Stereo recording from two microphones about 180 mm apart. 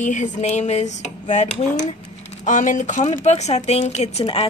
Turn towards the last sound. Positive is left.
turn(degrees=35)  # may be behind; listen again after turning